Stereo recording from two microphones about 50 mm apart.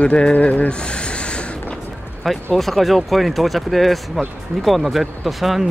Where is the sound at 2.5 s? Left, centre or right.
Centre.